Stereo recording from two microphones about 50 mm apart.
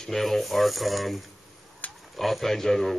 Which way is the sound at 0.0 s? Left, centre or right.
Centre.